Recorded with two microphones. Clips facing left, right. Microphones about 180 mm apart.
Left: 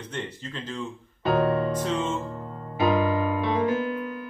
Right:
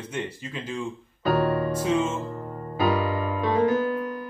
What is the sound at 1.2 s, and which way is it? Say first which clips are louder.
Music: even; 20° left (ahead or behind).